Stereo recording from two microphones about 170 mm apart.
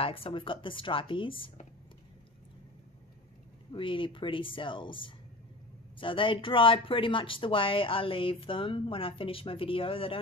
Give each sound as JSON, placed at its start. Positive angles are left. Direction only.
{"t": 0.0, "sound": "speech", "side_deg": 35}
{"t": 3.7, "sound": "speech", "side_deg": 30}